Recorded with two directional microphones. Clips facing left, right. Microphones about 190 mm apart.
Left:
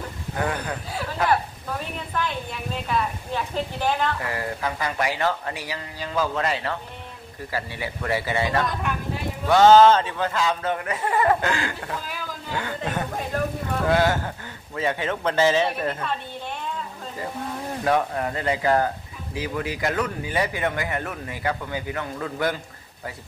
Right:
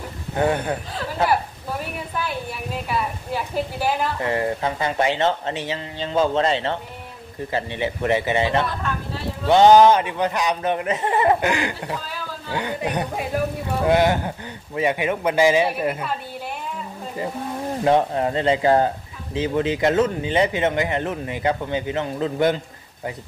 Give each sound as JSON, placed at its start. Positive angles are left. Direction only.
{"t": 0.4, "sound": "speech", "side_deg": -25}
{"t": 2.1, "sound": "a man's voice", "side_deg": -10}
{"t": 4.2, "sound": "speech", "side_deg": -25}
{"t": 8.6, "sound": "vehicle", "side_deg": 15}
{"t": 9.5, "sound": "a man's voice", "side_deg": -15}
{"t": 17.8, "sound": "speech", "side_deg": -25}